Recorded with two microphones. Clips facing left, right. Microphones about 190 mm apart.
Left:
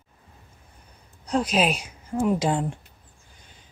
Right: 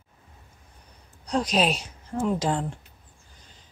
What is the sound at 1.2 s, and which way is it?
A woman's voice, 5° left (ahead or behind).